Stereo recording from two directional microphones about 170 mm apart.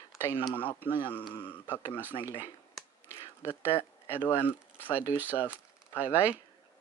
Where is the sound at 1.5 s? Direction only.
10° left (ahead or behind).